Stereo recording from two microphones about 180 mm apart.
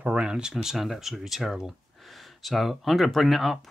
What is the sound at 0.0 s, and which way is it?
Speech, 5° right (ahead or behind).